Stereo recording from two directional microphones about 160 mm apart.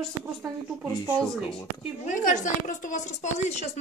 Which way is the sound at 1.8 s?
50° left (ahead or behind).